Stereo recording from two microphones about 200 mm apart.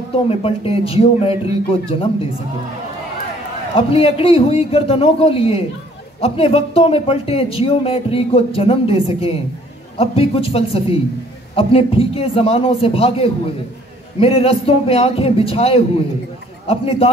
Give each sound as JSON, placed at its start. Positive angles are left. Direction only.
{"t": 0.3, "sound": "speech", "side_deg": 30}
{"t": 3.7, "sound": "speech", "side_deg": 30}